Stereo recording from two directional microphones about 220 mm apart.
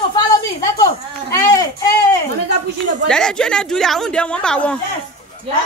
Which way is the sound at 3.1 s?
5° left (ahead or behind).